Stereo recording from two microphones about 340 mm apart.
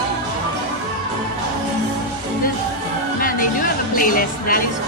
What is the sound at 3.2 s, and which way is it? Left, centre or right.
Music, left.